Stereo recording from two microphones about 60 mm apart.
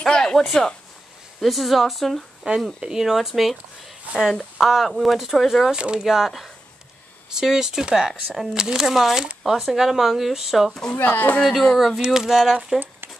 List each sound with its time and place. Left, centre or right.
0.0 s speech: centre
1.4 s speech: centre
2.4 s speech: centre
2.8 s speech: centre
4.1 s speech: right
4.6 s speech: centre
5.8 s speech: centre
6.0 s speech: centre
8.5 s speech: centre
11.0 s speech: left
11.4 s speech: centre
12.0 s speech: centre